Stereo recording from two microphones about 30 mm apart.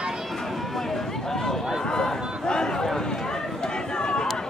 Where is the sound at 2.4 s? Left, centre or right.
Left.